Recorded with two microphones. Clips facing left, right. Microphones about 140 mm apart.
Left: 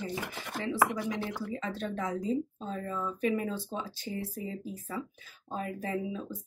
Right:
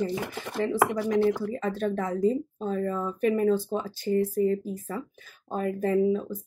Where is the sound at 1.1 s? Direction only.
45° right (ahead or behind).